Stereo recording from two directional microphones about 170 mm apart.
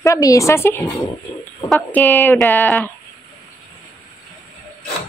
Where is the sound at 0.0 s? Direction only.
20° left (ahead or behind).